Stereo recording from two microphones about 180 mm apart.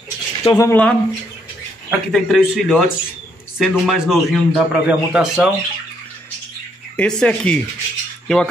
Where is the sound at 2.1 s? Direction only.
Centre (ahead or behind).